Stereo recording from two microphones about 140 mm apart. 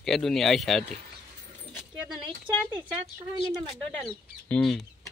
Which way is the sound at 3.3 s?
30° right (ahead or behind).